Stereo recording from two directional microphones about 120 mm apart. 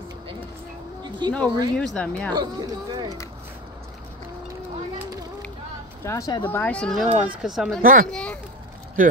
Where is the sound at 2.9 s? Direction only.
35° right (ahead or behind).